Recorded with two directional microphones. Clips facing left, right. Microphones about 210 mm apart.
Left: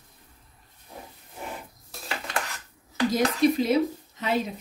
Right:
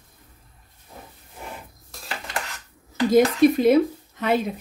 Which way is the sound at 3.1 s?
55° right (ahead or behind).